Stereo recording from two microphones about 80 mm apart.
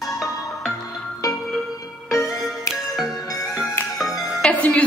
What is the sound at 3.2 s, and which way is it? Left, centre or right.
Music, left.